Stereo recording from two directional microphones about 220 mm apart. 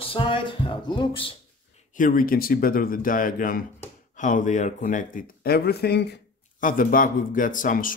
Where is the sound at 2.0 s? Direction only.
40° left (ahead or behind).